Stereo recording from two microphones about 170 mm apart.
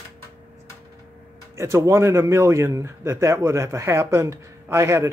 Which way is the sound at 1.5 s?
15° right (ahead or behind).